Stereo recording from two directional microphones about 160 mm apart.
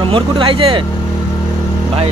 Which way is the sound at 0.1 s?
35° right (ahead or behind).